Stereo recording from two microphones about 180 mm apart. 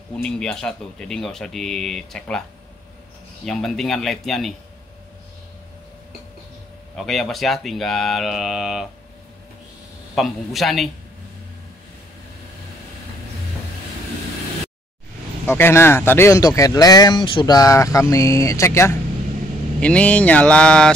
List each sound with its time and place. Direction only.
0.2 s speech: 5° left (ahead or behind)
3.4 s speech: centre (ahead or behind)
7.0 s speech: centre (ahead or behind)
10.1 s speech: centre (ahead or behind)
15.4 s speech: 10° left (ahead or behind)